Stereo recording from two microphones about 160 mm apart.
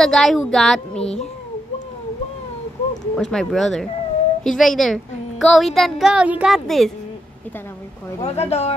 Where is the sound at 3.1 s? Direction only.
5° left (ahead or behind).